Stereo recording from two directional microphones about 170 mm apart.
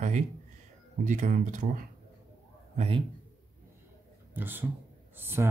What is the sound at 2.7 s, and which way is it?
Speech, 30° right (ahead or behind).